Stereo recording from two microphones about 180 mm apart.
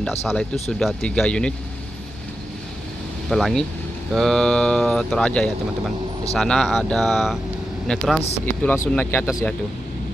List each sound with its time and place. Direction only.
0.0 s speech: 5° left (ahead or behind)
3.3 s speech: centre (ahead or behind)
8.5 s speech: 10° left (ahead or behind)
9.3 s speech: centre (ahead or behind)